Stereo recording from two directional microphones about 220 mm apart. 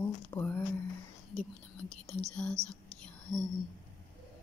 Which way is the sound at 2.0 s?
5° left (ahead or behind).